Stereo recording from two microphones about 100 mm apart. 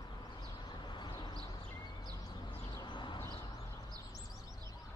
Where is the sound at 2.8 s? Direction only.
50° left (ahead or behind).